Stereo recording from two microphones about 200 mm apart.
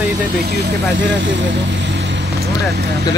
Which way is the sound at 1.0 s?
65° right (ahead or behind).